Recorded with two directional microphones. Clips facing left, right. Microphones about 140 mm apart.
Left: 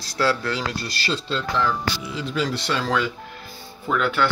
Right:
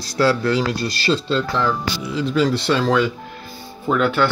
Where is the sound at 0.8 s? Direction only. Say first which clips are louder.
Right 7 dB; 25° right (ahead or behind).